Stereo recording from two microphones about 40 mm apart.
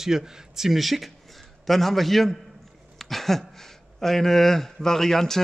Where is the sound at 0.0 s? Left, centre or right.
Centre.